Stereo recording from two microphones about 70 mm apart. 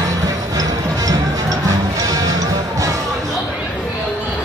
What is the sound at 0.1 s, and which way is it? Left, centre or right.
Music, right.